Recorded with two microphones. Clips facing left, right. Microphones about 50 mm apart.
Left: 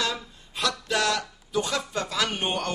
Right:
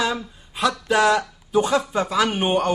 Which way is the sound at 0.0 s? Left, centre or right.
Centre.